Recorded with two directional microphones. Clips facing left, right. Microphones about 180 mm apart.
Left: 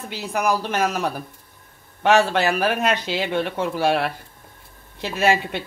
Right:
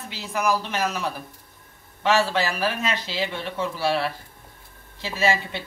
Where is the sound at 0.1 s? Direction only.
55° left (ahead or behind).